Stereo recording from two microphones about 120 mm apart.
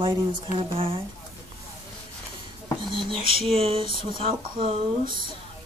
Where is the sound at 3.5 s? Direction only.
55° right (ahead or behind).